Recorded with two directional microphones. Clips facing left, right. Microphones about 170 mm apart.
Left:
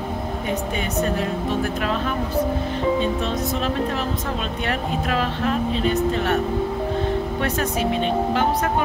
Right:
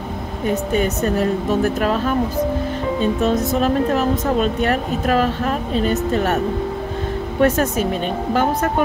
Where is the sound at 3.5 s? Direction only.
45° right (ahead or behind).